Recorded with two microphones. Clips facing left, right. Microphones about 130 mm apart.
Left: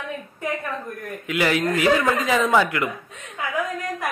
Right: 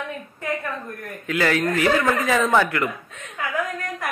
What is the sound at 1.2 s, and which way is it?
Speech, 20° left (ahead or behind).